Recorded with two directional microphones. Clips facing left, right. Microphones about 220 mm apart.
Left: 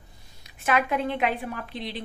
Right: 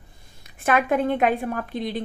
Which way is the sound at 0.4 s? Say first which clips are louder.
Right 3 dB; 50° right (ahead or behind).